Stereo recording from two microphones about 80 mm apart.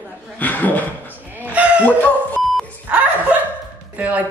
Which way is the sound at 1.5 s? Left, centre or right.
Centre.